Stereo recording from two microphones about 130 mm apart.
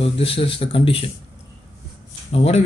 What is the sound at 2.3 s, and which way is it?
Speech, 50° left (ahead or behind).